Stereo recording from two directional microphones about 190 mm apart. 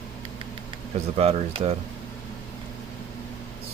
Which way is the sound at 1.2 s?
30° right (ahead or behind).